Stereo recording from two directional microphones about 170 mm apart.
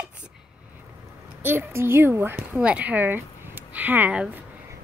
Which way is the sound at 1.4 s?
15° right (ahead or behind).